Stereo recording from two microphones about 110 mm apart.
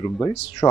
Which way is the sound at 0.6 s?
25° left (ahead or behind).